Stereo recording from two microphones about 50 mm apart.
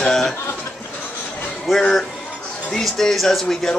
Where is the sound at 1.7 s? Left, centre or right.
Centre.